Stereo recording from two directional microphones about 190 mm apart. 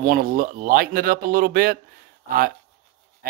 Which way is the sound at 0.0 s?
50° right (ahead or behind).